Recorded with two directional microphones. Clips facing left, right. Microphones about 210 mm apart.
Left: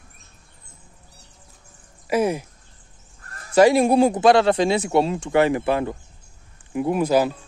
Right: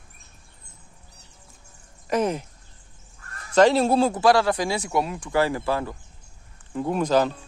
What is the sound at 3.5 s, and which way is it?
Speech, 10° left (ahead or behind).